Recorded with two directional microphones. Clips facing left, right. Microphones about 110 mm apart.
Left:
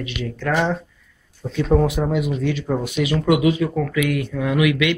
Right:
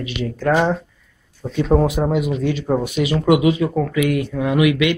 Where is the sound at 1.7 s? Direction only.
20° right (ahead or behind).